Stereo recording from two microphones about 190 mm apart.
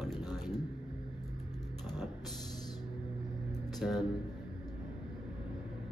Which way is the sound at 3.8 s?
Centre (ahead or behind).